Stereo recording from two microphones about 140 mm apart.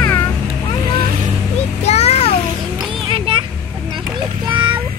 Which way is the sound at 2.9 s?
35° right (ahead or behind).